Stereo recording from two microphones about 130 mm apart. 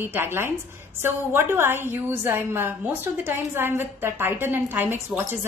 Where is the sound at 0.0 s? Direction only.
15° right (ahead or behind).